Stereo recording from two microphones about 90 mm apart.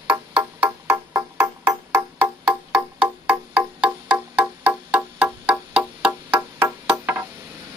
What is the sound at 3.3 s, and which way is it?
Music, 20° right (ahead or behind).